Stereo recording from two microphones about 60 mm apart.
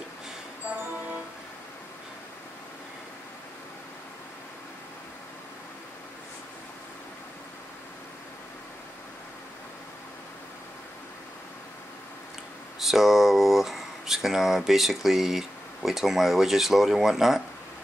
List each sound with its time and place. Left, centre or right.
12.8 s speech: centre